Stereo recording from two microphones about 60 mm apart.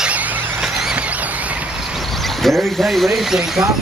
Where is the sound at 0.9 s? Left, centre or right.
Right.